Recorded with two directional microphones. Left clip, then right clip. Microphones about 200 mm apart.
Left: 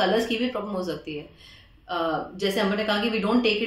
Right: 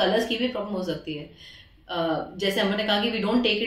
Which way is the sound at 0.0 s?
20° left (ahead or behind).